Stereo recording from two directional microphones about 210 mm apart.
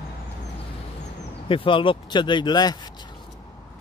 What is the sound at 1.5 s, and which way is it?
Speech, 25° left (ahead or behind).